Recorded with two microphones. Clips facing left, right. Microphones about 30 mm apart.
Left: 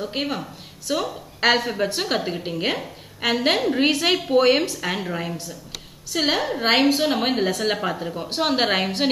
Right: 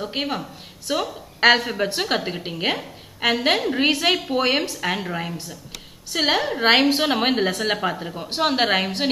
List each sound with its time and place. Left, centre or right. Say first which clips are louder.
0.0 s a woman's voice: even; centre
6.1 s a woman's voice: right 1 dB; centre
7.0 s a woman's voice: right 1 dB; right
7.2 s a woman's voice: right 1 dB; centre